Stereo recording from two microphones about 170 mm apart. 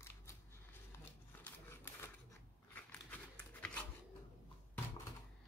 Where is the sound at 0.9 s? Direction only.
10° left (ahead or behind).